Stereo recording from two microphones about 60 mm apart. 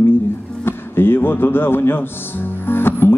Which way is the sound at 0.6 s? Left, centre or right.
Left.